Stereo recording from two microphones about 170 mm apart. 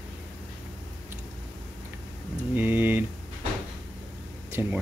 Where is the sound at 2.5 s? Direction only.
10° right (ahead or behind).